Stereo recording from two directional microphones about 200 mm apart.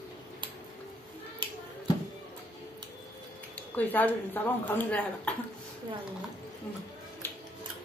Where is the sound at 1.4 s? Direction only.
25° right (ahead or behind).